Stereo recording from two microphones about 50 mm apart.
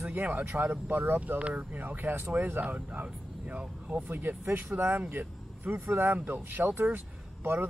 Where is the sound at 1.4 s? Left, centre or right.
Right.